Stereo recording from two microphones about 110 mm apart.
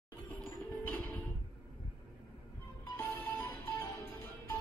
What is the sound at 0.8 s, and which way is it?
Music, 15° left (ahead or behind).